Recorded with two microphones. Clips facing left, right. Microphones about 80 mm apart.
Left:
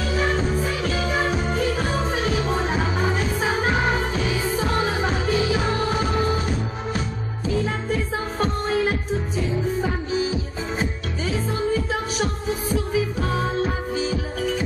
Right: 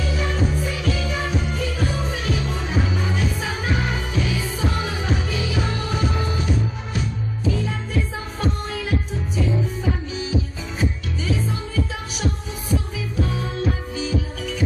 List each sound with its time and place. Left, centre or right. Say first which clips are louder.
0.0 s music: left 2 dB; left
8.4 s music: left 4 dB; left
11.9 s music: left 3 dB; left